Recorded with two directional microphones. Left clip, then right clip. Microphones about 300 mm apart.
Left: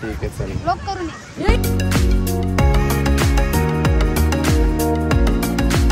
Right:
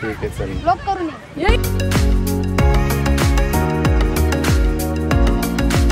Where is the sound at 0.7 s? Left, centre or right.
Right.